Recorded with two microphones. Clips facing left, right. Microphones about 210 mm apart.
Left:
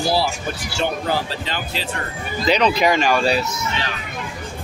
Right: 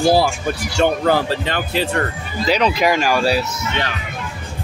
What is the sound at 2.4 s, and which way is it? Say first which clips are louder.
Speech: even; 5° right (ahead or behind).